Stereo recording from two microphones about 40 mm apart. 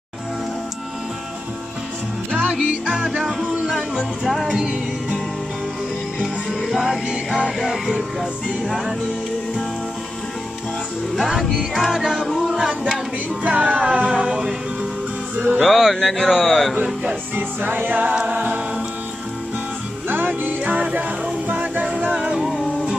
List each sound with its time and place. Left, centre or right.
2.5 s music: centre
6.8 s music: centre
7.9 s music: centre
11.1 s music: centre
11.5 s speech: centre
12.4 s music: centre
13.4 s music: right
15.5 s speech: centre
17.4 s music: right
18.1 s music: right
20.1 s music: right
20.6 s music: right
22.3 s music: centre